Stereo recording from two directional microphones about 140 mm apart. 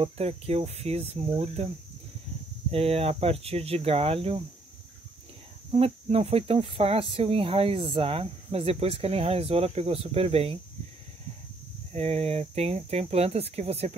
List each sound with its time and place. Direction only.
0.0 s speech: 45° right (ahead or behind)
2.7 s speech: 45° right (ahead or behind)
5.7 s speech: 45° right (ahead or behind)
11.9 s speech: 45° right (ahead or behind)